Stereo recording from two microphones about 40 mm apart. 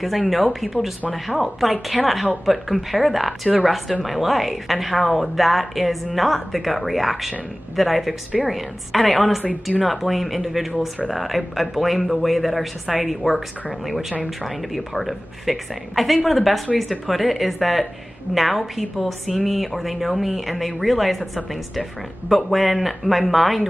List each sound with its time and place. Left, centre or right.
0.0 s speech: centre
14.4 s speech: centre
22.3 s speech: centre